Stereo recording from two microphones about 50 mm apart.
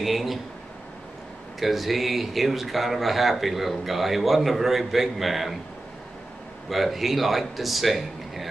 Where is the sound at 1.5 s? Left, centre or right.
Centre.